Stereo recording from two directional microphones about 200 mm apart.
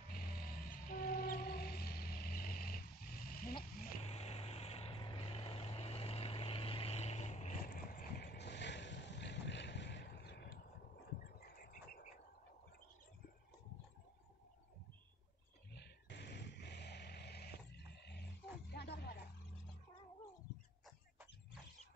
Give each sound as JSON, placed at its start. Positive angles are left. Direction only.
{"t": 0.1, "sound": "train", "side_deg": 45}
{"t": 4.0, "sound": "vehicle", "side_deg": 30}
{"t": 7.6, "sound": "boat", "side_deg": 45}
{"t": 11.3, "sound": "a sound", "side_deg": 50}
{"t": 15.7, "sound": "a sound", "side_deg": 55}
{"t": 18.7, "sound": "music", "side_deg": 55}